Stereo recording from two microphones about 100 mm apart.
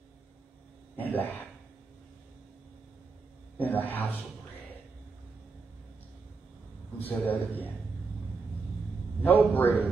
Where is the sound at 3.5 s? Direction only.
20° left (ahead or behind).